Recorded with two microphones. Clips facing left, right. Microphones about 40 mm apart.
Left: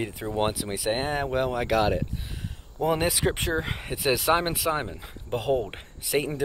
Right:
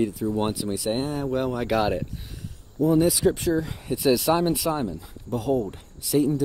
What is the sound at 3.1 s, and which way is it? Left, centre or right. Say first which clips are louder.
Speech: right 4 dB; left.